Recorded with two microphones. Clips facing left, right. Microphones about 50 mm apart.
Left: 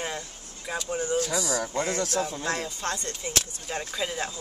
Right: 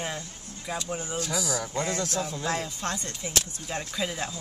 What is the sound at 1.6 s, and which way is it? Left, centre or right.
Speech, left.